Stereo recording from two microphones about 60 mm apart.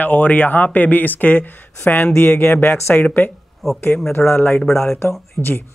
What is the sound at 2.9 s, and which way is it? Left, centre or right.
Speech, left.